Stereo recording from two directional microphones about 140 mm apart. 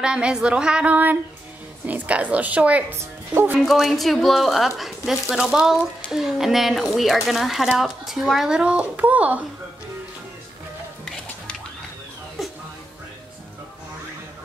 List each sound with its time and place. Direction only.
0.0 s a woman's voice: 5° right (ahead or behind)
3.5 s speech: centre (ahead or behind)